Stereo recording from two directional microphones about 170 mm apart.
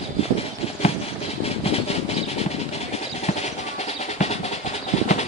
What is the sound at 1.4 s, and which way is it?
Vehicle, 35° left (ahead or behind).